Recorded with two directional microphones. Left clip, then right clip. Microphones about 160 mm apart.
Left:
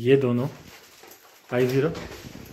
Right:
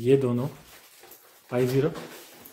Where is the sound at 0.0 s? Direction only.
5° right (ahead or behind).